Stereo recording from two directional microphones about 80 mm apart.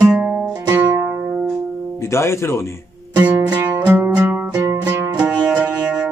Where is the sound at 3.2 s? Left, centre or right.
Right.